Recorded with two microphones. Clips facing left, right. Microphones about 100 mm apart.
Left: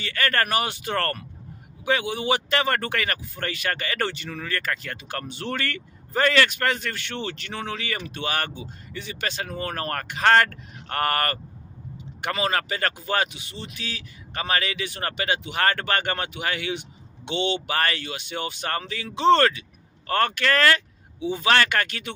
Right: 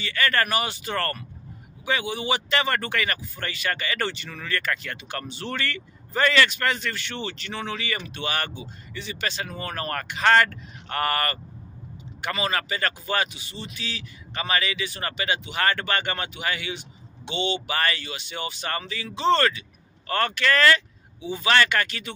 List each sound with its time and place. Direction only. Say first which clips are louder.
0.0 s speech: even; 45° left (ahead or behind)
4.3 s speech: even; 35° left (ahead or behind); by 17.6 s 60° left (ahead or behind)
17.6 s speech: left 1 dB; 45° left (ahead or behind)